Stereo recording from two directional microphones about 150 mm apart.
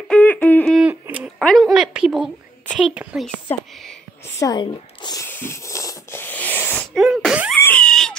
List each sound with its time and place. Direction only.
0.1 s a sound: 10° left (ahead or behind)
1.1 s a woman's voice: centre (ahead or behind)
4.4 s speech: 30° left (ahead or behind)
5.2 s wheeze: 15° left (ahead or behind)
7.0 s sneeze: 5° right (ahead or behind)
7.6 s a sound: 5° left (ahead or behind)